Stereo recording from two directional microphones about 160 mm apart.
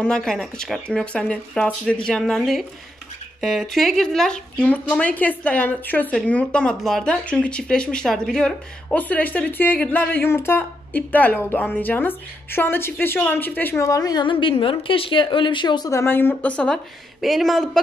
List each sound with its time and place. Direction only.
0.0 s a woman's voice: 5° left (ahead or behind); by 15.9 s 30° left (ahead or behind)
15.9 s speech: 15° left (ahead or behind)